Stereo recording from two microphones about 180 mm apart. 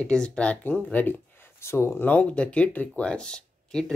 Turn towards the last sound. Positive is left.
turn(degrees=5)  # may be behind; listen again after turning